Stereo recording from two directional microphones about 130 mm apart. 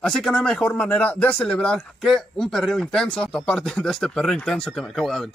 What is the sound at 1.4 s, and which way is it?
Chopping, 10° left (ahead or behind).